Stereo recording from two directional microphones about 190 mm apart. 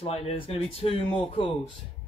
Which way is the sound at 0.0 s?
30° left (ahead or behind).